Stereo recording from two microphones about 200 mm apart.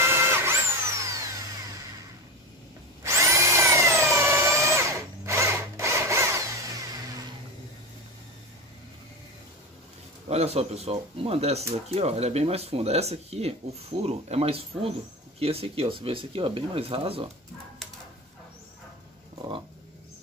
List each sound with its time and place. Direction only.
0.0 s drill: 10° right (ahead or behind)
3.0 s drill: 15° right (ahead or behind)
10.2 s speech: 30° right (ahead or behind)